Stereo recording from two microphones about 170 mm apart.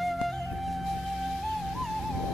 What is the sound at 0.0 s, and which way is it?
Music, centre (ahead or behind).